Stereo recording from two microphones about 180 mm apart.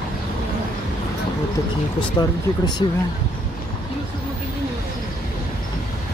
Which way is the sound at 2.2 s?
25° left (ahead or behind).